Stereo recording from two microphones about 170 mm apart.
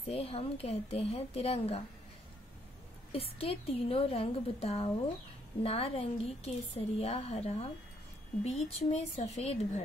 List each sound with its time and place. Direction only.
0.0 s a woman's voice: 35° left (ahead or behind)
3.1 s a woman's voice: 35° left (ahead or behind)